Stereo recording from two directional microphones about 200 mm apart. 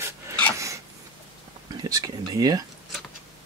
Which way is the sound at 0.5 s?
15° right (ahead or behind).